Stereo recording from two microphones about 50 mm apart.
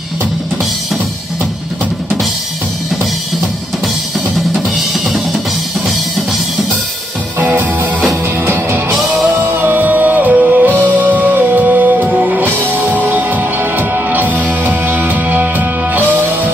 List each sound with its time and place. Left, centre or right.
7.3 s music: right
9.4 s music: right